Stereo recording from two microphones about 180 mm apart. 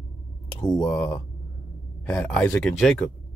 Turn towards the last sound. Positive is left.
turn(degrees=5)  # may be behind; listen again after turning